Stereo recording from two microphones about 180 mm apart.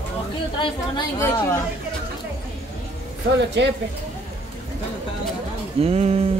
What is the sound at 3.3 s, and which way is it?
Speech, 75° right (ahead or behind).